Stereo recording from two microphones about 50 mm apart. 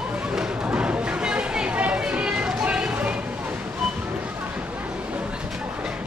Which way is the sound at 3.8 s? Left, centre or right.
Centre.